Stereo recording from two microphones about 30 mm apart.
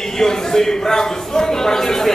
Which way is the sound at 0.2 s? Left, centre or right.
Centre.